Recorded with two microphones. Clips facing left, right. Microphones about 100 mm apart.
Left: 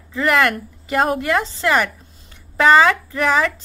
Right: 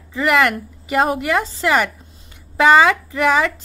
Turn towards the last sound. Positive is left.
turn(degrees=-5)  # may be behind; listen again after turning